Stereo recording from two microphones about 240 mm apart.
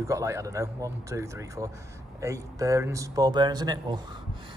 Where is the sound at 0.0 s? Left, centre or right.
Centre.